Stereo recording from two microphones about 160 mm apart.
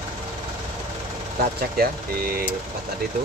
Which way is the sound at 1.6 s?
70° right (ahead or behind).